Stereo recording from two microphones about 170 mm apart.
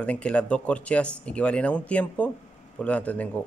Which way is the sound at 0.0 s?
5° left (ahead or behind).